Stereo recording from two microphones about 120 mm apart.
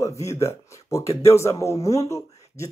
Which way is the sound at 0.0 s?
25° left (ahead or behind).